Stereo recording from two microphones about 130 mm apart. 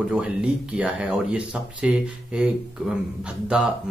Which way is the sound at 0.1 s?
5° right (ahead or behind).